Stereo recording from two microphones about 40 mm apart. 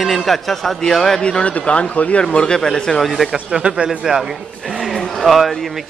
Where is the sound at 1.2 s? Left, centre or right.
Left.